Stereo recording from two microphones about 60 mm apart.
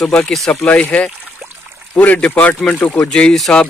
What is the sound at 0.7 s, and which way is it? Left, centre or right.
Speech, left.